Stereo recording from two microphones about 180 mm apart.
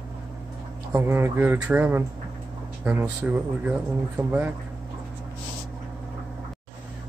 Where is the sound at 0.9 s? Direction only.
15° right (ahead or behind).